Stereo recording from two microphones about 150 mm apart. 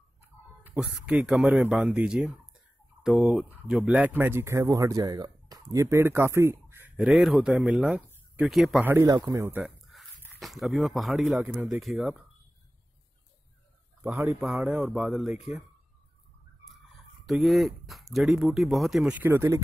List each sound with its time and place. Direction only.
0.7 s speech: 10° right (ahead or behind)
7.1 s speech: centre (ahead or behind)
8.8 s speech: 15° right (ahead or behind)
9.5 s a sound: 5° right (ahead or behind)
10.4 s speech: centre (ahead or behind)
14.0 s speech: 10° right (ahead or behind)
17.3 s speech: centre (ahead or behind); by 19.6 s 15° right (ahead or behind)